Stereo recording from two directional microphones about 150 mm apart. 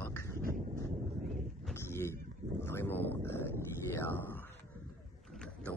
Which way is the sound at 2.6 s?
15° left (ahead or behind).